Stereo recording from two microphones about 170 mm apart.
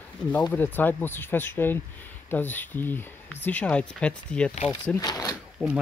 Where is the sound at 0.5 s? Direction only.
10° left (ahead or behind).